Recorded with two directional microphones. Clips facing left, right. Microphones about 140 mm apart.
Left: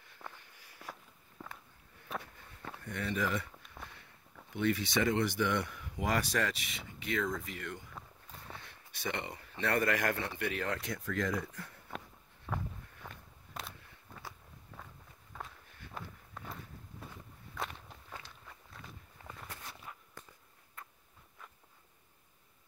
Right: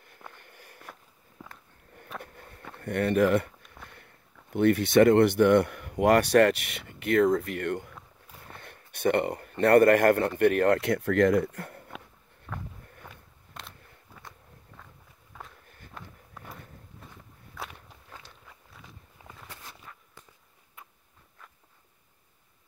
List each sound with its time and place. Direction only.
0.3 s sniff: 55° right (ahead or behind)
1.4 s a sound: 5° right (ahead or behind)
2.2 s a sound: 55° right (ahead or behind)
2.8 s speech: 60° right (ahead or behind)
3.8 s a sound: centre (ahead or behind)
4.5 s speech: 55° right (ahead or behind)
12.5 s walk: 10° left (ahead or behind)
13.1 s biting: centre (ahead or behind)
14.7 s walk: 5° left (ahead or behind)
18.5 s walk: 5° right (ahead or behind)
19.2 s a sound: 15° right (ahead or behind)
19.9 s walk: 15° left (ahead or behind)